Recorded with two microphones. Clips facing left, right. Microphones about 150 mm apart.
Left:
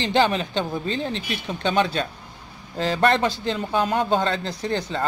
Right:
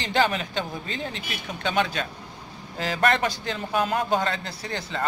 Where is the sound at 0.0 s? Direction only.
25° left (ahead or behind).